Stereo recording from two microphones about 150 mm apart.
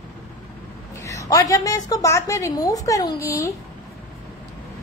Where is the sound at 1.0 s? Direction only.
20° left (ahead or behind).